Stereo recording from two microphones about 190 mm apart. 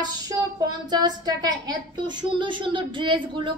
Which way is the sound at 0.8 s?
20° right (ahead or behind).